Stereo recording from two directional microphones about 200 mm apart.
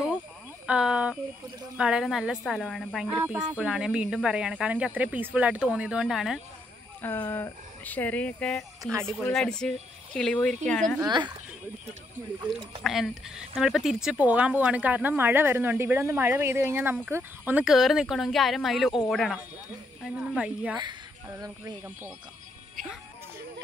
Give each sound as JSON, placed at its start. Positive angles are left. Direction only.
{"t": 0.7, "sound": "a sound", "side_deg": -5}
{"t": 1.8, "sound": "speech", "side_deg": -5}
{"t": 7.0, "sound": "speech", "side_deg": 10}
{"t": 11.0, "sound": "speech", "side_deg": -20}
{"t": 12.2, "sound": "speech", "side_deg": -40}
{"t": 12.8, "sound": "speech", "side_deg": 0}